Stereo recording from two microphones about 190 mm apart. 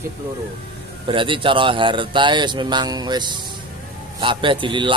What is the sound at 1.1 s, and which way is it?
Speech, 25° right (ahead or behind).